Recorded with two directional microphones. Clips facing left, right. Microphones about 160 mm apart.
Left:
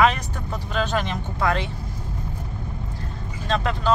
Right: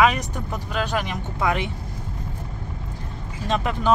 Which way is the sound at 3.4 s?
15° right (ahead or behind).